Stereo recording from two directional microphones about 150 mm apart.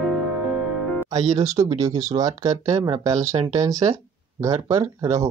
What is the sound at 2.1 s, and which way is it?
Speech, 25° right (ahead or behind).